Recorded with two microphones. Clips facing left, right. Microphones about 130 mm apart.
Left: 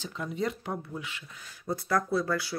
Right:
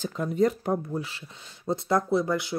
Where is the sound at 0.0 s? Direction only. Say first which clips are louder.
Right 8 dB; 45° right (ahead or behind).